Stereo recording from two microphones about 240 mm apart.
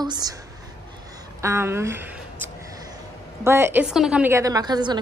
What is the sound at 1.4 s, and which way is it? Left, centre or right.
A woman's voice, centre.